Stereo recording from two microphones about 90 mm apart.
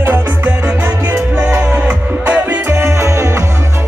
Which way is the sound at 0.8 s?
35° right (ahead or behind).